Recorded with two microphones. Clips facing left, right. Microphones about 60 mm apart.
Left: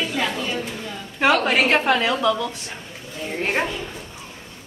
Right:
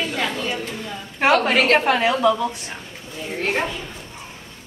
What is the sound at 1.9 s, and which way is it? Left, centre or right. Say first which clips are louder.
Speech: right 2 dB; right.